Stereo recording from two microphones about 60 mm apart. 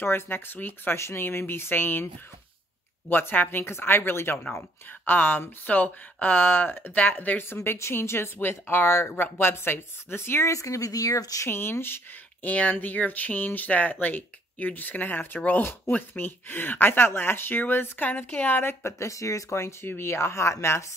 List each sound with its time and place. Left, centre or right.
0.0 s speech: left
3.1 s speech: left
7.4 s speech: left
10.5 s speech: left
11.4 s speech: left
12.4 s speech: left